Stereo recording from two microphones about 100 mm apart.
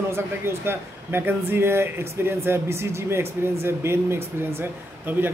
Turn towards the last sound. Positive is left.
turn(degrees=-20)  # may be behind; listen again after turning